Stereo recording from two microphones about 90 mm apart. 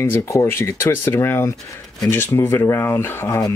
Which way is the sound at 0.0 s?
30° left (ahead or behind).